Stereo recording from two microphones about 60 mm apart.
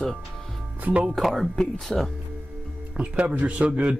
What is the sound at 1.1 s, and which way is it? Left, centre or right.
Speech, centre.